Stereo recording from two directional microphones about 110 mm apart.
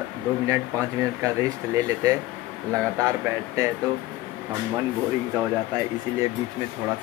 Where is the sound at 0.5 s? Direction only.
30° right (ahead or behind).